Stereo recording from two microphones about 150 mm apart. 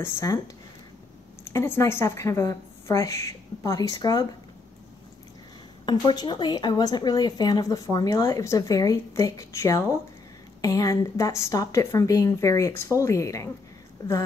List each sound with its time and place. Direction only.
0.0 s speech: 25° left (ahead or behind)
1.5 s speech: 20° left (ahead or behind)
5.9 s speech: 30° left (ahead or behind)